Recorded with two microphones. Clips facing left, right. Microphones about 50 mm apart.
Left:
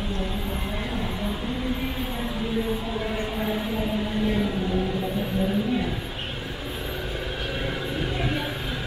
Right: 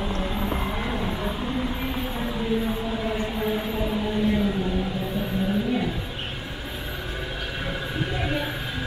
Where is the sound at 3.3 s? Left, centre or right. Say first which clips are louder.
Right 1 dB; centre.